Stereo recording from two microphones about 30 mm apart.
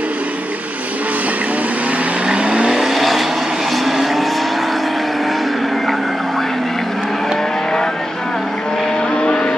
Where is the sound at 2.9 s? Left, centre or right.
Centre.